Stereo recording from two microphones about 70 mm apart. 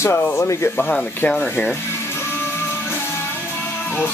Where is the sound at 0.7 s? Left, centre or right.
Centre.